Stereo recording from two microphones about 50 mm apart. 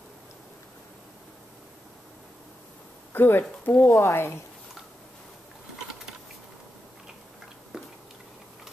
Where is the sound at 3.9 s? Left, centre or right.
Left.